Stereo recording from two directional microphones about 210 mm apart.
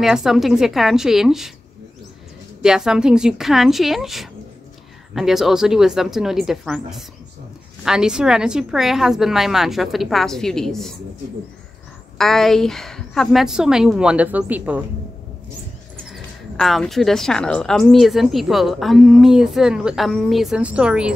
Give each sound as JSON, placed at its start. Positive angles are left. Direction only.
{"t": 0.0, "sound": "speech", "side_deg": 0}
{"t": 2.6, "sound": "speech", "side_deg": -5}
{"t": 12.2, "sound": "speech", "side_deg": 0}
{"t": 16.1, "sound": "speech", "side_deg": 0}